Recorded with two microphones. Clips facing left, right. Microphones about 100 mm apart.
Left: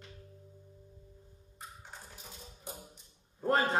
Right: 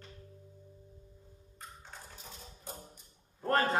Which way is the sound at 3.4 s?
15° left (ahead or behind).